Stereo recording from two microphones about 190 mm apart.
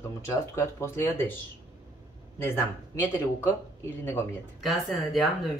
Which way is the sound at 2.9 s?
10° left (ahead or behind).